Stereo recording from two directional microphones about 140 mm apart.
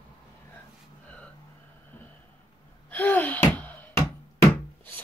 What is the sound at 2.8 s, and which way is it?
Gasp, 10° left (ahead or behind).